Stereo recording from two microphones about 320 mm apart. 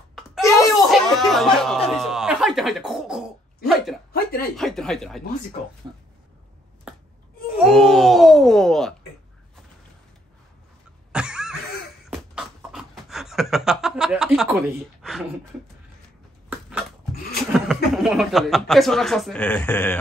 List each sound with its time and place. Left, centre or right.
0.4 s a sound: centre
0.8 s speech: centre
4.1 s speech: left
4.6 s speech: centre
7.5 s a child's voice: centre
11.1 s cough: centre
12.1 s a sound: centre
17.5 s a sound: centre
17.9 s speech: centre